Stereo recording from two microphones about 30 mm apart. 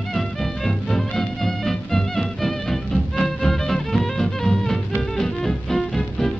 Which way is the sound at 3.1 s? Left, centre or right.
Centre.